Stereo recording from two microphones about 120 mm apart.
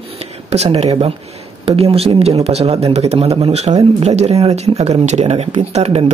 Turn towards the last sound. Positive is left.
turn(degrees=-60)  # may be behind; listen again after turning